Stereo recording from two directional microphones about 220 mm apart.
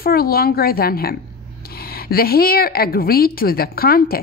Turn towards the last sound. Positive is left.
turn(degrees=40)  # may be behind; listen again after turning